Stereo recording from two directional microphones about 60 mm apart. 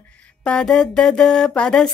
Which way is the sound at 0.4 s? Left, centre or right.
Centre.